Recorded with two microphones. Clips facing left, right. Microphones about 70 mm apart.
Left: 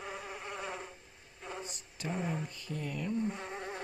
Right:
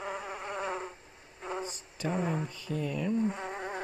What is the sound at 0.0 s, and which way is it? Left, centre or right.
Insect, right.